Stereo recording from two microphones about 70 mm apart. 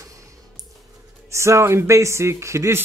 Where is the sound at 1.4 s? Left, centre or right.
Right.